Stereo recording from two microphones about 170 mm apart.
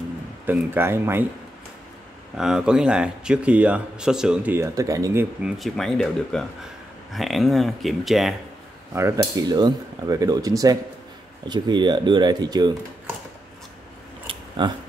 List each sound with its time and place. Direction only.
0.5 s speech: 15° right (ahead or behind)
2.3 s speech: 5° right (ahead or behind); by 5.2 s 20° right (ahead or behind)
5.4 s speech: centre (ahead or behind)
8.9 s cutlery: 15° right (ahead or behind)
14.3 s a sound: 30° right (ahead or behind)